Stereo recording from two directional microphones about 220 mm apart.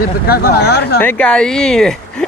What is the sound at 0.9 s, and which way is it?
Speech, 5° left (ahead or behind).